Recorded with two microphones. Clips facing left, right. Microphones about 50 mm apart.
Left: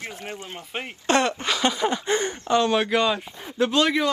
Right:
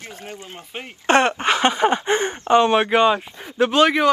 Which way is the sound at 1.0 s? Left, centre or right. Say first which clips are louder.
Right 5 dB; right.